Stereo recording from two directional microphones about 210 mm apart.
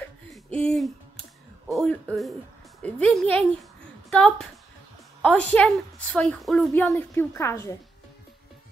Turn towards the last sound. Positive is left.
turn(degrees=15)  # may be behind; listen again after turning